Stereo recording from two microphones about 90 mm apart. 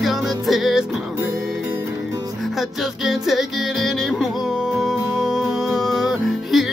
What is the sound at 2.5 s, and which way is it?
Music, 5° right (ahead or behind).